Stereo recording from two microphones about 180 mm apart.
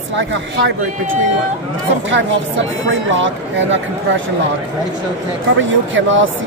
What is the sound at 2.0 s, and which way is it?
Speech, 90° right.